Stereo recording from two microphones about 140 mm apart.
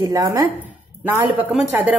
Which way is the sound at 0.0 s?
25° right (ahead or behind).